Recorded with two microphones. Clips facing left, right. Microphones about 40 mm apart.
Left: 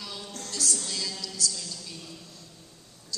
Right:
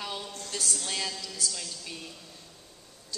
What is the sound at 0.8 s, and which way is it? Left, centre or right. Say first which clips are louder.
A woman's voice: right 1 dB; right.